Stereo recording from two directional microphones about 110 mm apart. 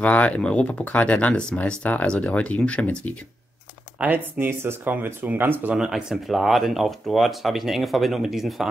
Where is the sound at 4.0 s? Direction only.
15° right (ahead or behind).